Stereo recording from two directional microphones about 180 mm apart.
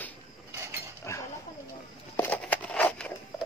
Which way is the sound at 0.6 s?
15° right (ahead or behind).